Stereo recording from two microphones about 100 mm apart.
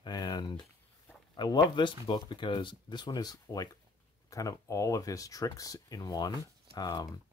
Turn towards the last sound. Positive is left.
turn(degrees=40)  # may be behind; listen again after turning